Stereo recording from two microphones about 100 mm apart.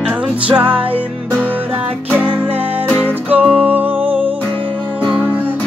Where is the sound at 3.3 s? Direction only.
15° right (ahead or behind).